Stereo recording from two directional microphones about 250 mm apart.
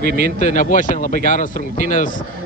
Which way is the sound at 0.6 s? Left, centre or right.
Left.